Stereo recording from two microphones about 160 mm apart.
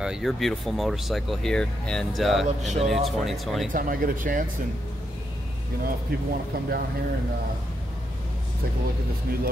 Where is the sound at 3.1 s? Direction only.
Centre (ahead or behind).